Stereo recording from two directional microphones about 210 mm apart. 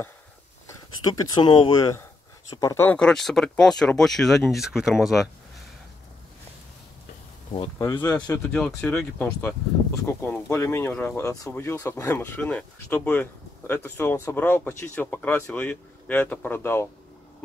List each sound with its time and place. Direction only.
0.7 s speech: 15° left (ahead or behind); by 5.3 s centre (ahead or behind)
7.5 s speech: 25° left (ahead or behind)
8.0 s speech: 5° left (ahead or behind)